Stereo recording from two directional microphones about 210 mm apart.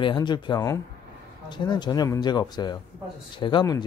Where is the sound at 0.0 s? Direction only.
20° left (ahead or behind).